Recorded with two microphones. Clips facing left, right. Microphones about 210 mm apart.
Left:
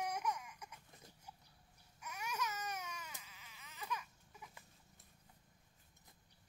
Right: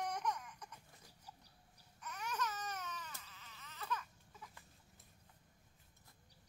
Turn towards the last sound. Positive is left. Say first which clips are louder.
# even
turn(degrees=10)  # may be behind; listen again after turning